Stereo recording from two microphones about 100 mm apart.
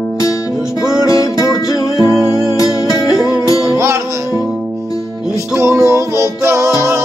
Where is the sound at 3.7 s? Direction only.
25° right (ahead or behind).